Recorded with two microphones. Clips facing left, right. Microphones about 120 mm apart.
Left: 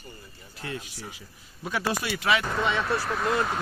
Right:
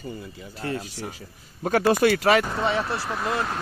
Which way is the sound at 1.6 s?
50° right (ahead or behind).